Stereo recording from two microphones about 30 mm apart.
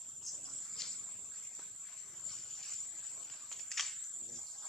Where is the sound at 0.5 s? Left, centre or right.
Centre.